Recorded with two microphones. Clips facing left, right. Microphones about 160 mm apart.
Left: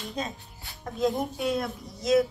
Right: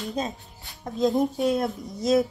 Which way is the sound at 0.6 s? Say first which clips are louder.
Right 3 dB; 20° right (ahead or behind).